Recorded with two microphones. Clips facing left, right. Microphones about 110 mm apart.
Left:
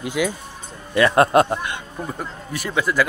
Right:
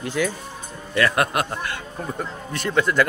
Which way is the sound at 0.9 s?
25° left (ahead or behind).